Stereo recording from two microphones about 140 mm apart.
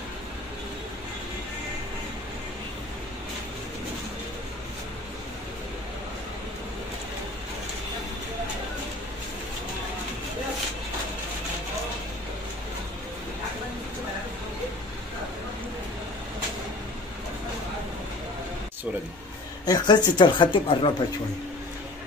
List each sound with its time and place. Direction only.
19.6 s speech: 30° left (ahead or behind)